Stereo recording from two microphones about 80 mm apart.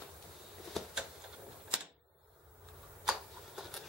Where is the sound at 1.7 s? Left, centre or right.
Centre.